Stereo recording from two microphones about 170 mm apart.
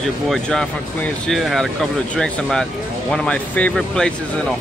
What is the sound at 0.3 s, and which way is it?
Speech, 5° left (ahead or behind).